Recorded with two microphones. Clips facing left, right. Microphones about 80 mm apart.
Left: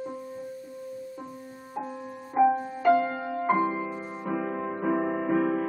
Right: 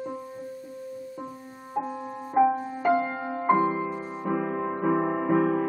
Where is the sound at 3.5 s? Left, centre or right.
Centre.